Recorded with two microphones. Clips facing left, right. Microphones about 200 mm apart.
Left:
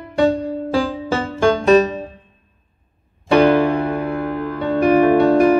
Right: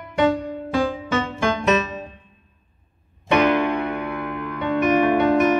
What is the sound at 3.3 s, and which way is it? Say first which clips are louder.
Music: left 5 dB; 30° left (ahead or behind).